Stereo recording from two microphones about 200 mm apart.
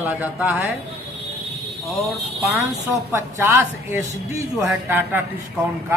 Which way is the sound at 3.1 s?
10° right (ahead or behind).